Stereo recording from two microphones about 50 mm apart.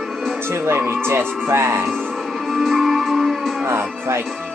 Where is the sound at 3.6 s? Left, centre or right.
Right.